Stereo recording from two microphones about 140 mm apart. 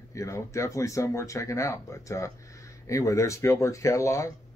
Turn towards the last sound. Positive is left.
turn(degrees=20)  # may be behind; listen again after turning